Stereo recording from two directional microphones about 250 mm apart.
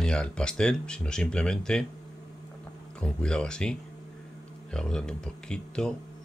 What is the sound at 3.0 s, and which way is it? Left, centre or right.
Speech, centre.